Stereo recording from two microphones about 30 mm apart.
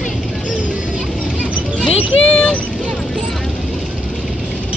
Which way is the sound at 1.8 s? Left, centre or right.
Left.